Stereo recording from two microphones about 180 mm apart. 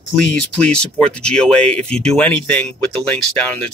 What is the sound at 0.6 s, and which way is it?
Speech, 5° left (ahead or behind).